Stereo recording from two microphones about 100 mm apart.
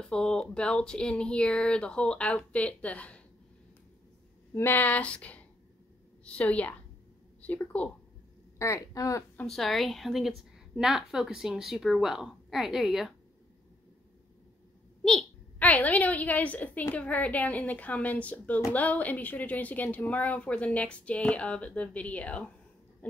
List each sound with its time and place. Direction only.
0.0 s a woman's voice: 10° left (ahead or behind)
4.6 s a woman's voice: 20° left (ahead or behind)
8.5 s speech: 30° left (ahead or behind)
9.5 s a woman's voice: centre (ahead or behind)
15.6 s a woman's voice: 15° left (ahead or behind)